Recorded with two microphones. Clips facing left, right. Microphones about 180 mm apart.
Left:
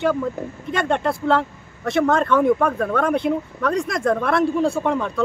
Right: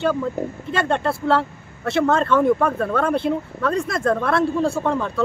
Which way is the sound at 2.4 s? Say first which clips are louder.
Even; centre (ahead or behind).